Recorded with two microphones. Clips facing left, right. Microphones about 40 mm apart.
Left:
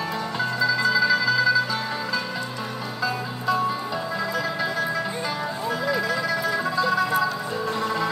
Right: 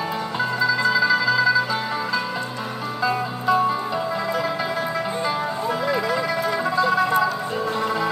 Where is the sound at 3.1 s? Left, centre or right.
Centre.